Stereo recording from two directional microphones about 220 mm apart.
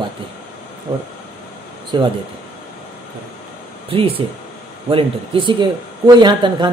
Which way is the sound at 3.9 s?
25° right (ahead or behind).